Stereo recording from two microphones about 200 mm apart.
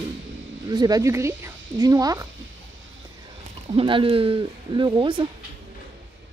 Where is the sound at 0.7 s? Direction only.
20° right (ahead or behind).